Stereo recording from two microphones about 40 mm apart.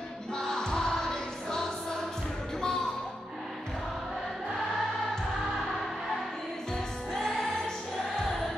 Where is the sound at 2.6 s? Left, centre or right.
Centre.